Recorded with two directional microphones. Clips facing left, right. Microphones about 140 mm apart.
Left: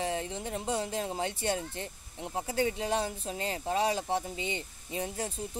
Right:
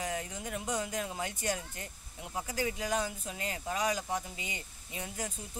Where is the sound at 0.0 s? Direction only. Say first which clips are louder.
Left 4 dB; 30° left (ahead or behind).